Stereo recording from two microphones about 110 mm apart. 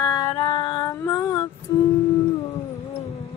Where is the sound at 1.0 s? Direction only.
25° left (ahead or behind).